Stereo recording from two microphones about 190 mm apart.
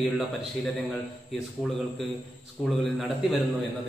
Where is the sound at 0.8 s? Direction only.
Centre (ahead or behind).